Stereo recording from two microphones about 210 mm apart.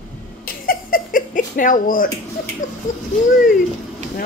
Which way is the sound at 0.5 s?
45° left (ahead or behind).